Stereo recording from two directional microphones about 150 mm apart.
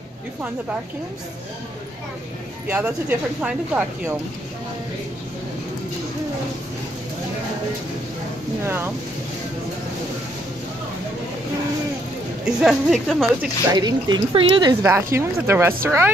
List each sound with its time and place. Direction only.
2.7 s speech: 10° right (ahead or behind)
8.6 s speech: 15° right (ahead or behind)
12.5 s speech: centre (ahead or behind)
13.7 s speech: 30° right (ahead or behind)
14.8 s speech: 15° right (ahead or behind)